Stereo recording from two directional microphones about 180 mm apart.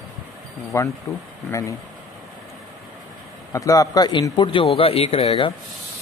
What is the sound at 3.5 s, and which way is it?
Speech, 15° left (ahead or behind).